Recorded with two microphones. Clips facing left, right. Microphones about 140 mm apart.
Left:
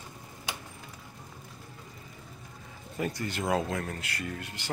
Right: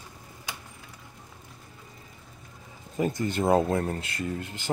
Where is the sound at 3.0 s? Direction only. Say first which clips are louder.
Right 6 dB; 20° right (ahead or behind).